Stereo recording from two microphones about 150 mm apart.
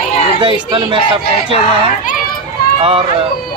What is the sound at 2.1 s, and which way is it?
Children playing, 70° left (ahead or behind).